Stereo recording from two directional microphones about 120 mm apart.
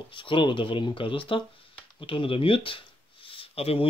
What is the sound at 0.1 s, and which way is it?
Speech, 45° left (ahead or behind).